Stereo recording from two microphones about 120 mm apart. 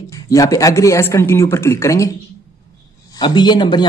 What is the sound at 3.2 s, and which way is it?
Speech, 40° left (ahead or behind).